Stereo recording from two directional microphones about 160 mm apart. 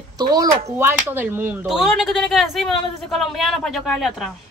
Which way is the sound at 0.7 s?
15° right (ahead or behind).